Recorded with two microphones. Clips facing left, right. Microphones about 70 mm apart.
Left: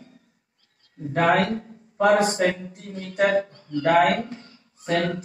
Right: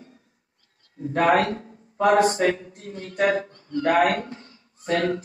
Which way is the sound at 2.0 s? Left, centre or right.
Right.